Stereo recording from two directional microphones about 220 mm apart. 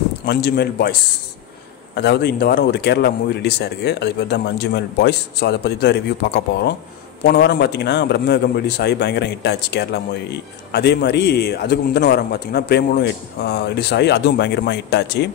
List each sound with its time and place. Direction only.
0.2 s speech: 45° left (ahead or behind)
2.0 s speech: 50° left (ahead or behind)